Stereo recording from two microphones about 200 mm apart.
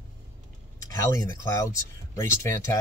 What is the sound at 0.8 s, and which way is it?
Speech, 15° left (ahead or behind).